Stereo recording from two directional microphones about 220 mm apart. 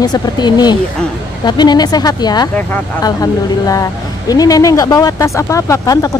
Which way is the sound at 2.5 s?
10° left (ahead or behind).